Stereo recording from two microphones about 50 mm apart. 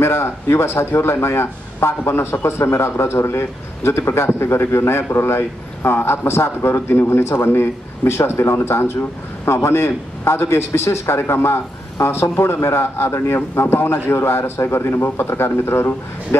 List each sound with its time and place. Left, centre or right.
0.0 s a man's voice: left
15.0 s a man's voice: left